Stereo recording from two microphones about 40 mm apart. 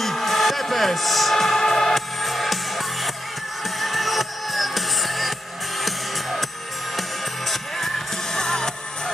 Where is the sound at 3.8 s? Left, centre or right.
Centre.